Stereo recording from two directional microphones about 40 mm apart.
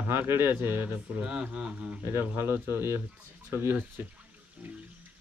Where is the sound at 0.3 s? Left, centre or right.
Right.